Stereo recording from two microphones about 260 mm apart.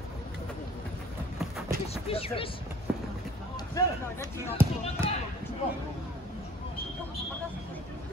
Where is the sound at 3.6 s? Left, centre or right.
Centre.